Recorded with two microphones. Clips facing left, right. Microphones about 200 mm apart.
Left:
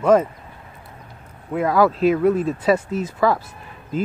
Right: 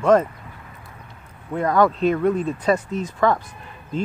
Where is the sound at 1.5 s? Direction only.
5° left (ahead or behind).